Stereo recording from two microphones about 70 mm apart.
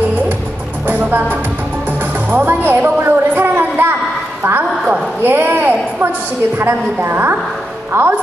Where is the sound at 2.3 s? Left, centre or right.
Right.